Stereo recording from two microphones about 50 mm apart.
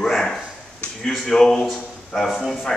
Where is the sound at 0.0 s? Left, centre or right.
Centre.